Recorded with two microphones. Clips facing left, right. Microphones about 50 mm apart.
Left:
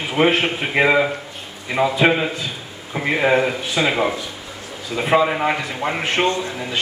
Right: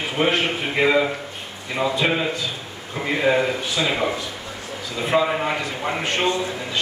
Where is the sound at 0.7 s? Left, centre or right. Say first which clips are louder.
Left 2 dB; left.